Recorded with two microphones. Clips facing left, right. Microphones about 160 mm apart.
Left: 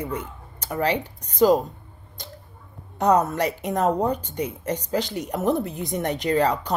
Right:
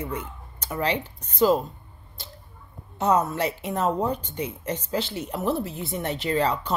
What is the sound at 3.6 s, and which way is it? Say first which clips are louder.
Speech: left 4 dB; 45° left (ahead or behind).